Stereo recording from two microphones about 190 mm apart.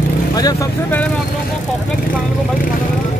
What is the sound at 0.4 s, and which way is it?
Speech, 20° left (ahead or behind).